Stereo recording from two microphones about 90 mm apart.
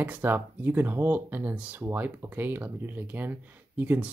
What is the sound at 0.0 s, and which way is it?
Speech, 20° right (ahead or behind).